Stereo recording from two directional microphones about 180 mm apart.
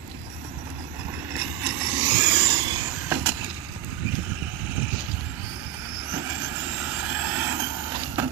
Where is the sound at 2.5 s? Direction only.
25° right (ahead or behind).